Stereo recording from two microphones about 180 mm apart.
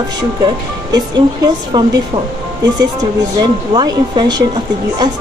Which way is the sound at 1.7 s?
25° right (ahead or behind).